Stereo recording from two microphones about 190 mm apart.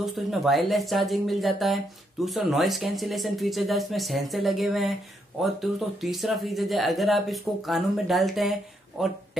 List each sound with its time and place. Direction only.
0.0 s speech: centre (ahead or behind)